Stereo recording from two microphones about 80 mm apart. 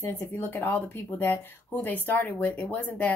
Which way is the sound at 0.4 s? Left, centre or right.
Left.